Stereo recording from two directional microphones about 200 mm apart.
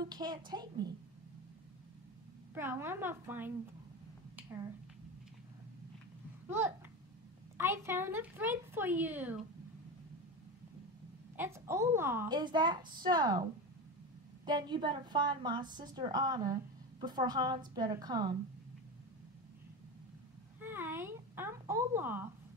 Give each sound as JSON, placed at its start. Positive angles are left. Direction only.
{"t": 0.0, "sound": "a woman's voice", "side_deg": -20}
{"t": 2.5, "sound": "speech", "side_deg": -10}
{"t": 7.5, "sound": "speech", "side_deg": -10}
{"t": 11.3, "sound": "speech", "side_deg": -10}
{"t": 12.4, "sound": "a woman's voice", "side_deg": -20}
{"t": 20.6, "sound": "speech", "side_deg": -10}